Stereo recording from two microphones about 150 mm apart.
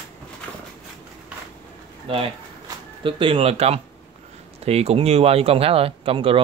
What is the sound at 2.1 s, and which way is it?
Speech, 40° right (ahead or behind).